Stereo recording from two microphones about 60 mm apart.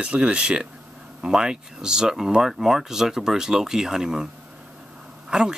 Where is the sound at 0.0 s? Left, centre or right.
Centre.